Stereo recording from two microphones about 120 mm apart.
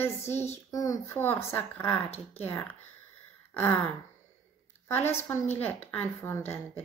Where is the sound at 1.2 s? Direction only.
15° left (ahead or behind).